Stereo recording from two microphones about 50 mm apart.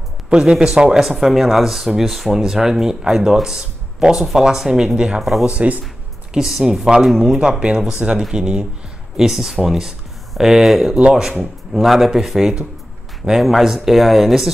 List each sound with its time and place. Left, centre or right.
0.3 s speech: centre
6.3 s speech: centre